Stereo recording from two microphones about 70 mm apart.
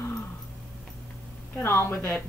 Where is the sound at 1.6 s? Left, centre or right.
Left.